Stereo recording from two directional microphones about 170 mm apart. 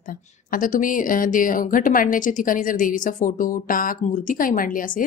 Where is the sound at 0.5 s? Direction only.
50° left (ahead or behind).